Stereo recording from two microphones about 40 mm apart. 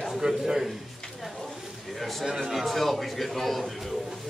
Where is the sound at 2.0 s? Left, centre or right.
Centre.